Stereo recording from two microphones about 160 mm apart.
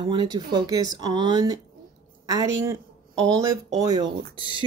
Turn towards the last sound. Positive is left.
turn(degrees=-30)  # may be behind; listen again after turning